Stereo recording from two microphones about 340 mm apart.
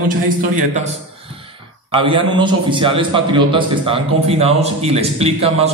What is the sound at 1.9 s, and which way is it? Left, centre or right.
A man's voice, centre.